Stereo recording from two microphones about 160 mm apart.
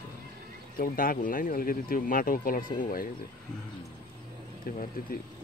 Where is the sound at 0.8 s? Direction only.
60° left (ahead or behind).